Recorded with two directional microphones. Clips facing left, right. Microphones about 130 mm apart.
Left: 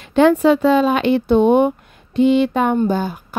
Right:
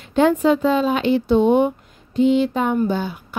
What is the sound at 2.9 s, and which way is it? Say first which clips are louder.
Speech: left 3 dB; 45° left (ahead or behind).